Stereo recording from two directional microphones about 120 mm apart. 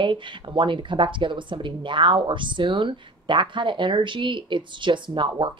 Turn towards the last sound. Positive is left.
turn(degrees=-40)  # may be behind; listen again after turning